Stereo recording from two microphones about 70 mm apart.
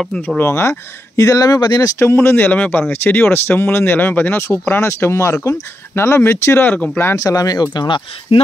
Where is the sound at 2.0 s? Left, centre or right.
Left.